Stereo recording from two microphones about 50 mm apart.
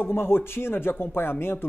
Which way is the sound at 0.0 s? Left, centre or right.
Left.